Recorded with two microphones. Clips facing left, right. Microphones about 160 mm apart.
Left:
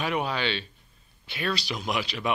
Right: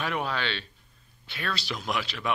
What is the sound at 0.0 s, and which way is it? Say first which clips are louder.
A man's voice: left 2 dB; 10° left (ahead or behind).